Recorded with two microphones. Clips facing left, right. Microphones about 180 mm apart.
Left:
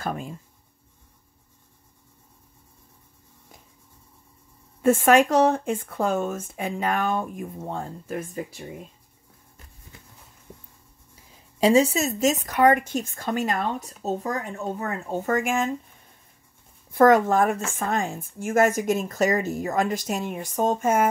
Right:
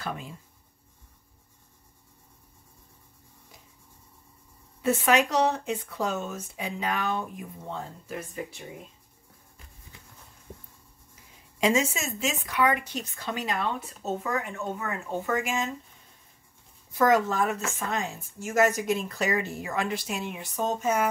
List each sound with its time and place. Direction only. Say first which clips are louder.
0.0 s speech: left 5 dB; 45° left (ahead or behind)
4.8 s speech: left 6 dB; 50° left (ahead or behind)
11.6 s speech: left 7 dB; 35° left (ahead or behind); by 15.7 s 55° left (ahead or behind)
16.9 s speech: left 6 dB; 55° left (ahead or behind)